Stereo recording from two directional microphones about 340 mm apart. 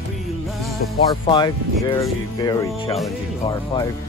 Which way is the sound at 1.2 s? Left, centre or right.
Centre.